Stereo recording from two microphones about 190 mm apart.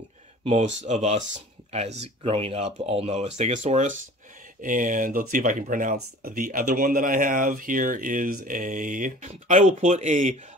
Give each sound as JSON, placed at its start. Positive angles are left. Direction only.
{"t": 0.5, "sound": "speech", "side_deg": -35}